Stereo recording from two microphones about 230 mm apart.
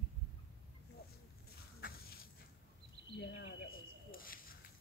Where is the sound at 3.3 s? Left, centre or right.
Left.